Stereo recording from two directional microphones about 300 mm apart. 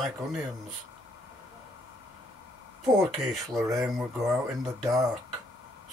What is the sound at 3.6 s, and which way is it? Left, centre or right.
Speech, centre.